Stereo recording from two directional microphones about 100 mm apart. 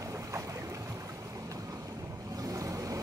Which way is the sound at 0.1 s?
35° right (ahead or behind).